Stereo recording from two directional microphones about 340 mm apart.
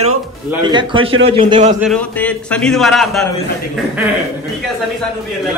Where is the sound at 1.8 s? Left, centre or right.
Centre.